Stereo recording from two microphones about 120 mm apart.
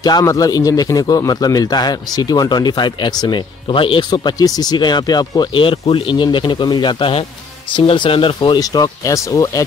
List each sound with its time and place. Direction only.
0.0 s speech: 30° left (ahead or behind)
4.1 s speech: 35° left (ahead or behind)
8.5 s speech: 30° left (ahead or behind)